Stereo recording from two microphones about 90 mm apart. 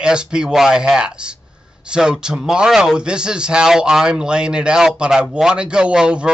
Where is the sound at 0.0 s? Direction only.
10° right (ahead or behind).